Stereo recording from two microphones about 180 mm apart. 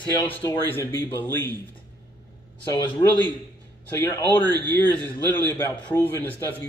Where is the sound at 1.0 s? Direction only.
10° left (ahead or behind).